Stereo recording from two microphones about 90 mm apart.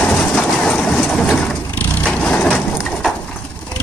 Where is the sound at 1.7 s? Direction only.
15° left (ahead or behind).